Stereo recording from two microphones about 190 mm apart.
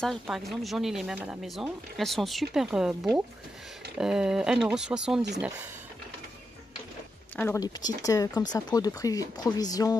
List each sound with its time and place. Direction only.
0.0 s speech: centre (ahead or behind)
7.3 s speech: 15° left (ahead or behind)